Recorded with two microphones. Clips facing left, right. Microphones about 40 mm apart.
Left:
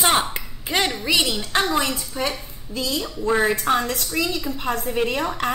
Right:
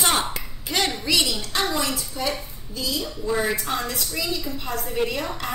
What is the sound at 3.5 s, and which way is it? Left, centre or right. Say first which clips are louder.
A woman's voice: left 6 dB; left.